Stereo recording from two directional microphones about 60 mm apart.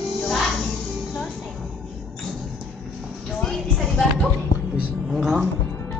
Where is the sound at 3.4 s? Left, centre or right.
Centre.